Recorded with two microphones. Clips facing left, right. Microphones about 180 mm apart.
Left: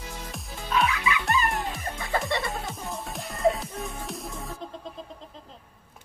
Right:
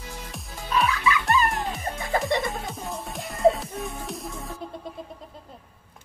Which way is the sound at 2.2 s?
20° right (ahead or behind).